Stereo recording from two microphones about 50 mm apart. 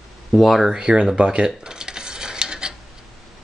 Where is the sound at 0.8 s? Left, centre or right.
Centre.